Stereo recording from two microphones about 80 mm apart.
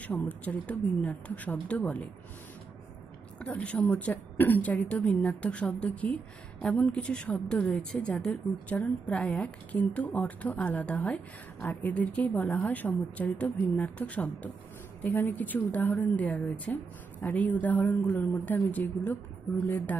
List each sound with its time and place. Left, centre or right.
0.0 s speech: left
3.3 s a woman's voice: centre